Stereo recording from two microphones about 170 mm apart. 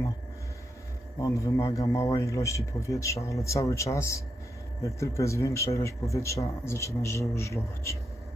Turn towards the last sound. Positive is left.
turn(degrees=15)  # may be behind; listen again after turning